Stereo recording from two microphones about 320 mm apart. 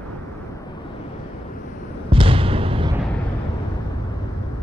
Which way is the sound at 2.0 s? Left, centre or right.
Centre.